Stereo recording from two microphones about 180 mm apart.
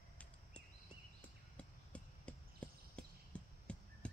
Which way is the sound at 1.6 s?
5° left (ahead or behind).